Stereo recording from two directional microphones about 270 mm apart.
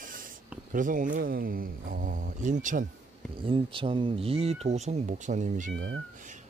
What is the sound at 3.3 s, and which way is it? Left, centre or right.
Speech, centre.